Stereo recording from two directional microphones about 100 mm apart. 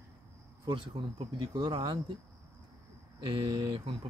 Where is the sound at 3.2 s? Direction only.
55° right (ahead or behind).